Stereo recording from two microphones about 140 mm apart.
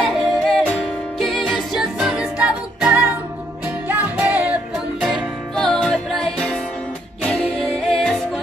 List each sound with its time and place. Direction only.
0.0 s music: centre (ahead or behind)